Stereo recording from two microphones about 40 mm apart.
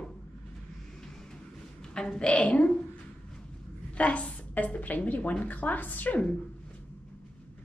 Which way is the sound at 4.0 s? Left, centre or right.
Left.